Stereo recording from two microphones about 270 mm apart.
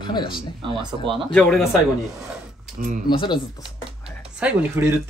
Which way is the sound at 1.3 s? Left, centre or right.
Centre.